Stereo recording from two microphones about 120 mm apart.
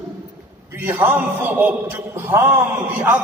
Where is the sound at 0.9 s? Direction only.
15° right (ahead or behind).